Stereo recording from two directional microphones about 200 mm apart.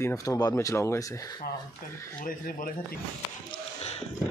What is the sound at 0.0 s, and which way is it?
Speech, 15° left (ahead or behind).